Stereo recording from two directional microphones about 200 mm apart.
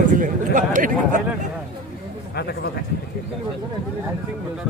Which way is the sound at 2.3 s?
55° left (ahead or behind).